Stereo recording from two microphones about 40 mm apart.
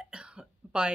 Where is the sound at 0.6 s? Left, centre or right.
Right.